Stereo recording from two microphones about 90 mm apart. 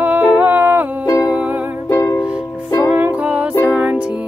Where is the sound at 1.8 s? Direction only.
35° left (ahead or behind).